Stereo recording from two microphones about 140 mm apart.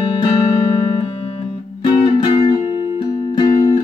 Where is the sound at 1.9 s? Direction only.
45° left (ahead or behind).